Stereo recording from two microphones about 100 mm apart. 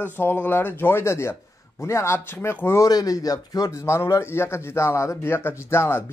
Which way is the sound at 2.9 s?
35° left (ahead or behind).